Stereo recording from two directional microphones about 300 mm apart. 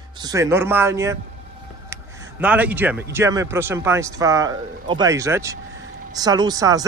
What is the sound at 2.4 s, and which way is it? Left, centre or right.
Speech, centre.